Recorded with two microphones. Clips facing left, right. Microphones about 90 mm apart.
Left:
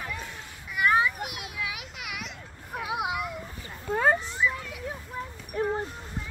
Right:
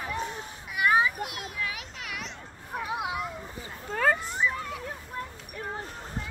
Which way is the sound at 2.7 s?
10° left (ahead or behind).